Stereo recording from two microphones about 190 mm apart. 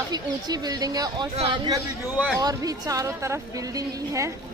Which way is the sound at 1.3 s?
30° right (ahead or behind).